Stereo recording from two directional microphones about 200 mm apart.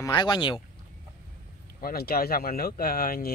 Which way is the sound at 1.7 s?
50° left (ahead or behind).